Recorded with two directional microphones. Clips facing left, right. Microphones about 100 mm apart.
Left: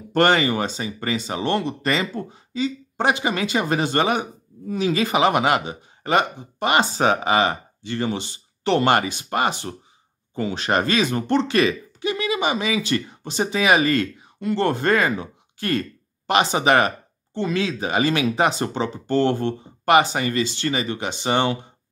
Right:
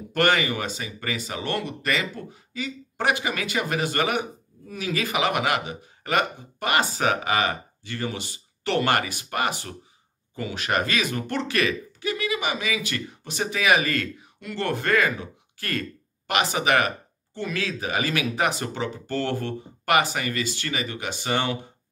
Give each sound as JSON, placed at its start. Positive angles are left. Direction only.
{"t": 0.1, "sound": "speech", "side_deg": 30}